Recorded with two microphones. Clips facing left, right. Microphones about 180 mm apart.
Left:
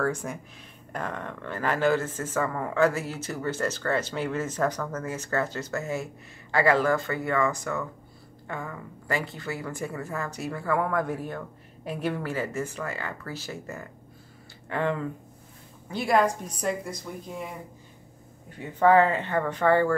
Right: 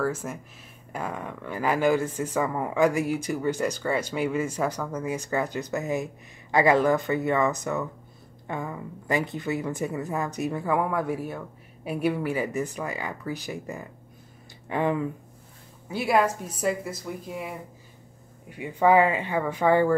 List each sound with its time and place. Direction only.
0.0 s speech: 5° right (ahead or behind)
18.5 s speech: 10° right (ahead or behind)